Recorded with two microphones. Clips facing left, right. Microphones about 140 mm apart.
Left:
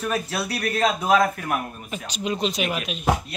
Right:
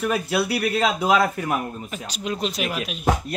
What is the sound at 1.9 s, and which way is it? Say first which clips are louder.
Speech: left 1 dB; centre (ahead or behind).